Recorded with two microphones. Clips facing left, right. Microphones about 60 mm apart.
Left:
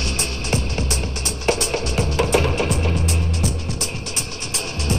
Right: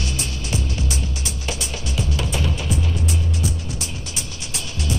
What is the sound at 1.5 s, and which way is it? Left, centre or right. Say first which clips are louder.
Music: left 10 dB; left.